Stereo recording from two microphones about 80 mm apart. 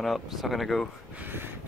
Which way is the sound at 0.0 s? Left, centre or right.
Centre.